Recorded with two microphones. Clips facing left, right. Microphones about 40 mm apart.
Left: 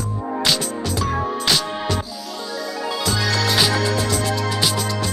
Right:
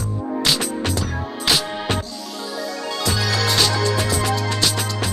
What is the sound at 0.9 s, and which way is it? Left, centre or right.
Music, left.